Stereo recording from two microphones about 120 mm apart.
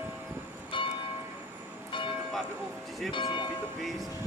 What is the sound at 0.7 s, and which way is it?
Church bell, 45° left (ahead or behind).